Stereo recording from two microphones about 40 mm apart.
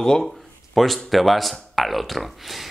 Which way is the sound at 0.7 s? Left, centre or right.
Centre.